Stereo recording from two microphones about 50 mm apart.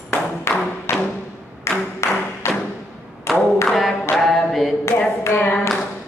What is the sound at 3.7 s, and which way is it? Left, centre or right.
Clapping, centre.